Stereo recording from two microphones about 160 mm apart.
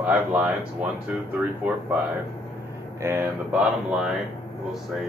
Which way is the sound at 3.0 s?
15° right (ahead or behind).